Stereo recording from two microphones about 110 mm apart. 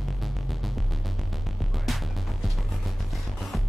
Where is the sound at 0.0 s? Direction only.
Centre (ahead or behind).